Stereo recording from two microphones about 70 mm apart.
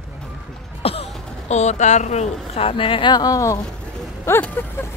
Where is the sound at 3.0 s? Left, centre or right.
Left.